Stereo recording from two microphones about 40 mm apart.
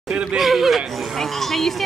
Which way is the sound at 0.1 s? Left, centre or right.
Right.